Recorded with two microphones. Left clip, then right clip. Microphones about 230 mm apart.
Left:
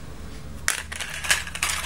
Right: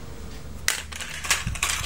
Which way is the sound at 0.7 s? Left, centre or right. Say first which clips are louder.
Left 1 dB; centre.